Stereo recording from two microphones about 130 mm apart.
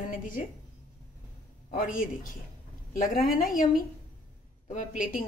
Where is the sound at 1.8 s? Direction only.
90° left.